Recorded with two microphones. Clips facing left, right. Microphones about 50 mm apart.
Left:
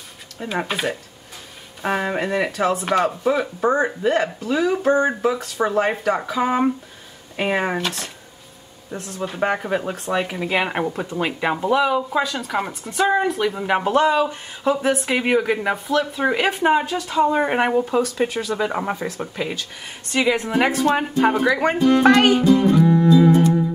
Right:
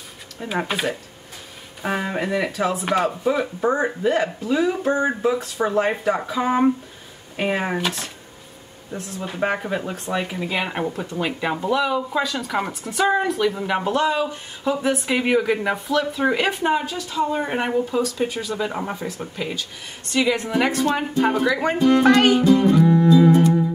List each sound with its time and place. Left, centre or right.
0.5 s speech: centre
16.9 s speech: left
17.3 s speech: left
20.1 s speech: centre
22.6 s music: centre